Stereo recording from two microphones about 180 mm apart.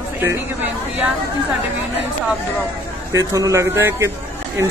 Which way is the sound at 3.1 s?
20° right (ahead or behind).